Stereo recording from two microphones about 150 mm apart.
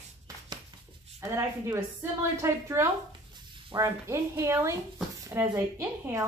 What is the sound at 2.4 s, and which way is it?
A woman's voice, 20° right (ahead or behind).